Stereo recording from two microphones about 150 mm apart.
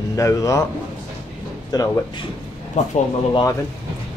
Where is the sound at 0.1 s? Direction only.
20° left (ahead or behind).